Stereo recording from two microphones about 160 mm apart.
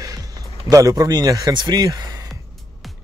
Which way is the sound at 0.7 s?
20° right (ahead or behind).